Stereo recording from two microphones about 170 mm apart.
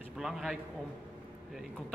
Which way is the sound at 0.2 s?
Centre (ahead or behind).